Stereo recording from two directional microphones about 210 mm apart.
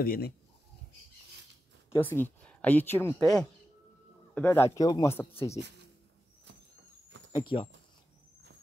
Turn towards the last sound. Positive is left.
turn(degrees=25)  # may be behind; listen again after turning